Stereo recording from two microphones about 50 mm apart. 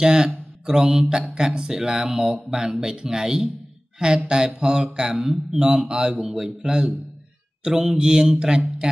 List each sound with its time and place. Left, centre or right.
0.0 s speech: centre
0.7 s a man's voice: centre
4.6 s a man's voice: centre
5.2 s a man's voice: centre